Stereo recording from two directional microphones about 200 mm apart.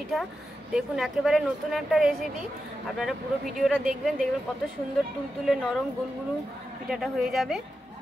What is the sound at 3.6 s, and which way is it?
Speech, centre (ahead or behind).